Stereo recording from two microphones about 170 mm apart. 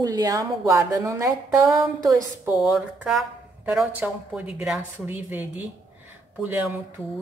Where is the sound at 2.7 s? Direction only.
Centre (ahead or behind).